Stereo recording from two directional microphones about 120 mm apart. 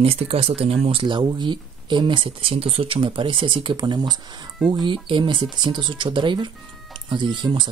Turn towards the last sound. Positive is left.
turn(degrees=-40)  # may be behind; listen again after turning